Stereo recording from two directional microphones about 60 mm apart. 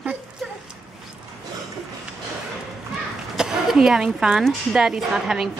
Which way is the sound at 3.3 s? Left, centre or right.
Centre.